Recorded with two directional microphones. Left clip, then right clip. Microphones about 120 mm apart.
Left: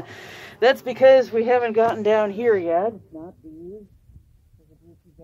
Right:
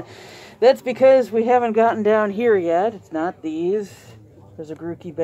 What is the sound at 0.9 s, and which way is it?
Speech, 60° right (ahead or behind).